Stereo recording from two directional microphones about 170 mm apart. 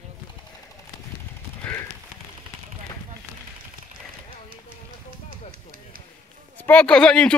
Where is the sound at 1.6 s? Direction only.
10° left (ahead or behind).